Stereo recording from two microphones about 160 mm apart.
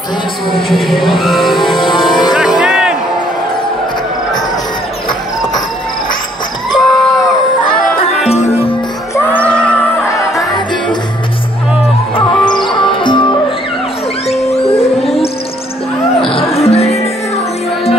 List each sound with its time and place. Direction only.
0.6 s vehicle: centre (ahead or behind)
1.8 s music: 30° left (ahead or behind)
2.6 s a sound: 5° right (ahead or behind)
6.8 s a sound: centre (ahead or behind)
9.1 s music: 10° left (ahead or behind)
12.6 s music: 30° left (ahead or behind)
14.2 s music: 40° left (ahead or behind)
16.3 s music: 35° left (ahead or behind)